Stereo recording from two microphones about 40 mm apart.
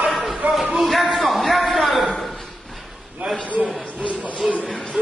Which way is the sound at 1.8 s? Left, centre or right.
Centre.